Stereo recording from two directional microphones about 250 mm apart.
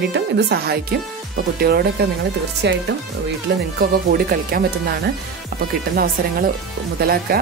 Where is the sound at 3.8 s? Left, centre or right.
Right.